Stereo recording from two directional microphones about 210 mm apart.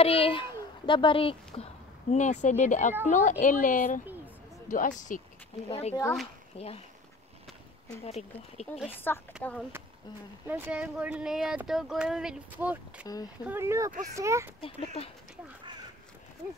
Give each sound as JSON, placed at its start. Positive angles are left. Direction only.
{"t": 0.0, "sound": "a child's voice", "side_deg": 25}
{"t": 8.0, "sound": "speech", "side_deg": 30}
{"t": 8.7, "sound": "speech", "side_deg": -5}
{"t": 9.4, "sound": "speech", "side_deg": 5}
{"t": 10.4, "sound": "speech", "side_deg": -10}
{"t": 13.0, "sound": "speech", "side_deg": 15}
{"t": 13.5, "sound": "speech", "side_deg": -10}
{"t": 14.6, "sound": "speech", "side_deg": 25}